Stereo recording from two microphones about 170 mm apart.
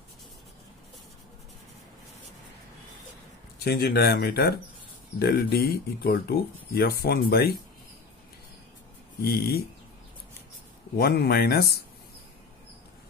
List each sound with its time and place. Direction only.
3.5 s speech: 65° left (ahead or behind)
9.2 s speech: 65° left (ahead or behind)
11.0 s speech: 65° left (ahead or behind)